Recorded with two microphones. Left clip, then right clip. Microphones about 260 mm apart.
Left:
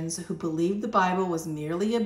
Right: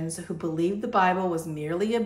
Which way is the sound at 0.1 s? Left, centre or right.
Centre.